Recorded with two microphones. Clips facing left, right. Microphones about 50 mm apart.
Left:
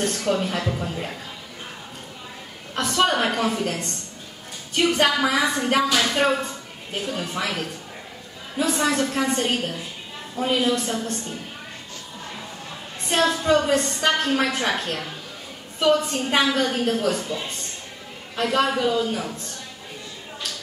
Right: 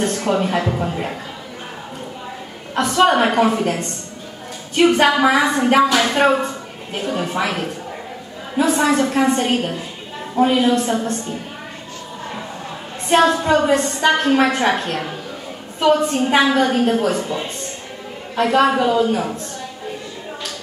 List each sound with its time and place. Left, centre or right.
0.0 s a woman's voice: right
2.7 s a woman's voice: right
8.7 s a woman's voice: right
13.1 s a woman's voice: right
16.4 s a woman's voice: right